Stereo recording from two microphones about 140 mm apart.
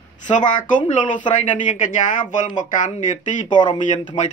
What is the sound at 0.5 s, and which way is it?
Speech, 70° left (ahead or behind).